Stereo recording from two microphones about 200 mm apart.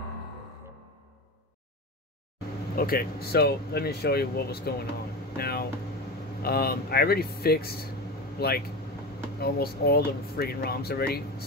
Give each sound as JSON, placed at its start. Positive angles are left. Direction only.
{"t": 2.7, "sound": "speech", "side_deg": 45}